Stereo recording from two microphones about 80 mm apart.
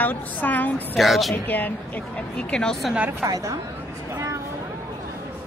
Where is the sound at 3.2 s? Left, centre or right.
Right.